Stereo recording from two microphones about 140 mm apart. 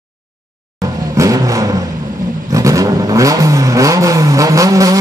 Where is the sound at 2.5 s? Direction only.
25° right (ahead or behind).